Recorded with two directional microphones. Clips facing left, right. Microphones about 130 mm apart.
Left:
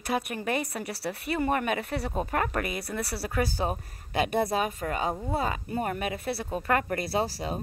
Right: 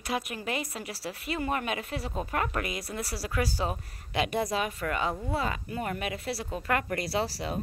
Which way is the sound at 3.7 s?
40° left (ahead or behind).